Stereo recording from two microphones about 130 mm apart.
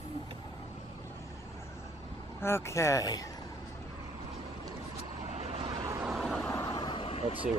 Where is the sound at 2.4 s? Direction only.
20° left (ahead or behind).